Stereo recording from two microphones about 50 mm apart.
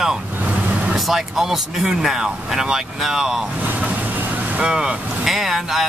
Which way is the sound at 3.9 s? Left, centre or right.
Right.